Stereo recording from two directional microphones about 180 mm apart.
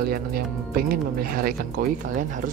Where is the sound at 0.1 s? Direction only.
55° right (ahead or behind).